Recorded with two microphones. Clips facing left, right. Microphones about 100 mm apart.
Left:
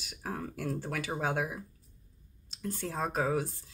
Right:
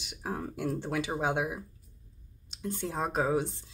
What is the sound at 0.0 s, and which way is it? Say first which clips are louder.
Speech: right 2 dB; 20° right (ahead or behind).